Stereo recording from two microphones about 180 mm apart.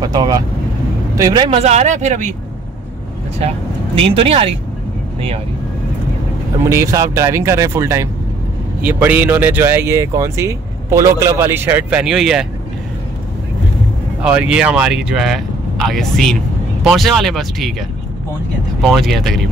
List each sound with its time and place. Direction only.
0.0 s speech: 20° right (ahead or behind)
1.5 s speech: 40° right (ahead or behind)
3.3 s speech: 35° right (ahead or behind)
6.6 s speech: 15° right (ahead or behind)
14.2 s speech: 5° right (ahead or behind)
18.8 s speech: centre (ahead or behind)